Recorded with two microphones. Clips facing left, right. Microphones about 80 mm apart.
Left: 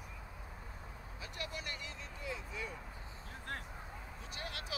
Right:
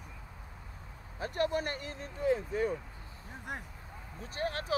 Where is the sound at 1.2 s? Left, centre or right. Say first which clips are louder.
Right 14 dB; right.